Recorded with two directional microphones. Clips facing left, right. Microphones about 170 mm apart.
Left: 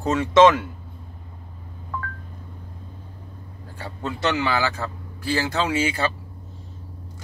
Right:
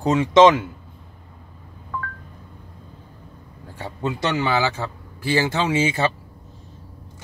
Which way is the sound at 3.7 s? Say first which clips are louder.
Right 4 dB; 20° right (ahead or behind).